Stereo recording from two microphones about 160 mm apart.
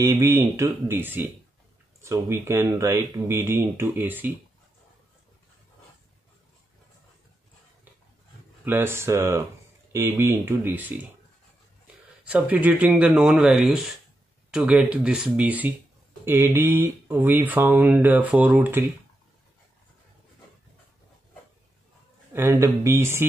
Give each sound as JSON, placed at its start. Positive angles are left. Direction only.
{"t": 0.0, "sound": "speech", "side_deg": -15}
{"t": 8.6, "sound": "speech", "side_deg": -15}
{"t": 12.3, "sound": "speech", "side_deg": -10}
{"t": 22.3, "sound": "speech", "side_deg": -15}